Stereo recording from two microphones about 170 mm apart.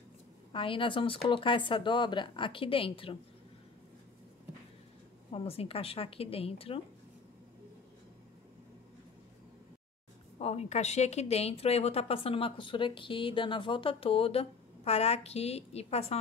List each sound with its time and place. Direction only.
0.5 s a woman's voice: 30° left (ahead or behind)
5.3 s a woman's voice: 35° left (ahead or behind)
10.4 s a woman's voice: 40° left (ahead or behind)